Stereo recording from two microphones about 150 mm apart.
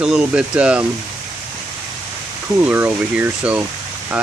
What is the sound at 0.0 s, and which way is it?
Speech, 5° right (ahead or behind).